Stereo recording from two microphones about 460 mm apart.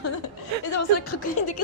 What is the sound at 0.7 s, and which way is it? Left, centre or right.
Speech, left.